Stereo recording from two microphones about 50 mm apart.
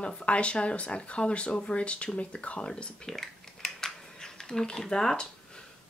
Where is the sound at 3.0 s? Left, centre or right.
Centre.